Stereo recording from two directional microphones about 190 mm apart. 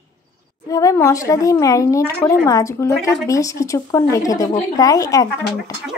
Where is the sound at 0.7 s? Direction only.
15° left (ahead or behind).